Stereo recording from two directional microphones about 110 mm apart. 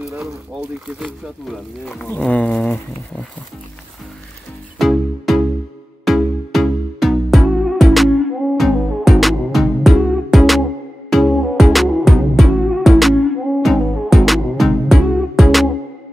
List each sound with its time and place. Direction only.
0.6 s speech: 5° right (ahead or behind)
2.0 s speech: 15° left (ahead or behind)
4.7 s music: centre (ahead or behind)